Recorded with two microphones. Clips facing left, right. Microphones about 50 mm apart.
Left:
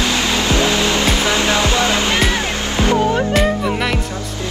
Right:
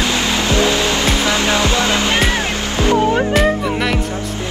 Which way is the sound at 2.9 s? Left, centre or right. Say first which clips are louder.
Right 2 dB; right.